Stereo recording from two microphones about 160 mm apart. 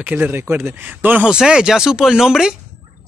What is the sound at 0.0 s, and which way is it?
Speech, 10° right (ahead or behind).